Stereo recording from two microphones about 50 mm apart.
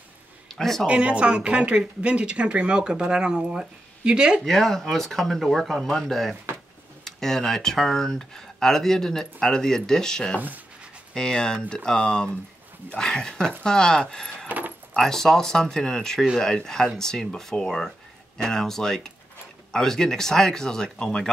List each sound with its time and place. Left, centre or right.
0.5 s speech: centre
0.8 s speech: right
4.5 s speech: centre